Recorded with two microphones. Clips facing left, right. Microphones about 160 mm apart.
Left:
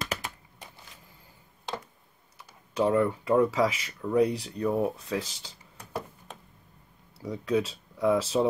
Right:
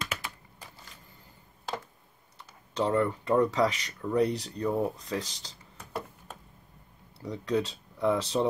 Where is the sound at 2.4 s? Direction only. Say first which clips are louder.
Left 3 dB; 10° left (ahead or behind).